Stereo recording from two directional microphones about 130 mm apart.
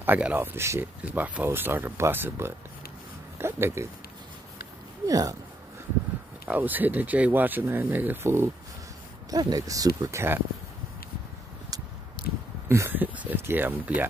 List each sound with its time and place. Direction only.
0.0 s speech: 15° right (ahead or behind)
5.0 s speech: 25° right (ahead or behind)
6.4 s speech: 15° right (ahead or behind)
9.3 s speech: 30° right (ahead or behind)
12.6 s speech: 20° right (ahead or behind)